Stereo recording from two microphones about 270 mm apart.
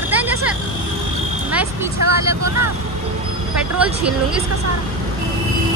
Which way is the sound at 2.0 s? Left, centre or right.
Right.